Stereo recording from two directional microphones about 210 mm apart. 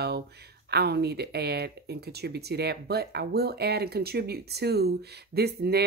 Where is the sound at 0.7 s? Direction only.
50° right (ahead or behind).